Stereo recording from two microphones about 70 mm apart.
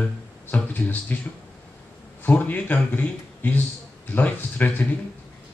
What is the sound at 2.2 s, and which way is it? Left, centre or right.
A man's voice, left.